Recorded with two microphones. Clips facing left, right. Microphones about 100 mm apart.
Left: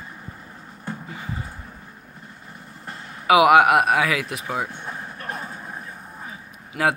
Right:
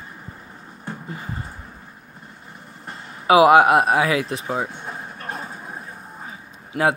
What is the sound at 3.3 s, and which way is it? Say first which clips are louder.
Speech: right 2 dB; 30° right (ahead or behind).